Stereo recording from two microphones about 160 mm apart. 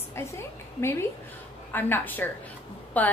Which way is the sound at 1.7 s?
15° left (ahead or behind).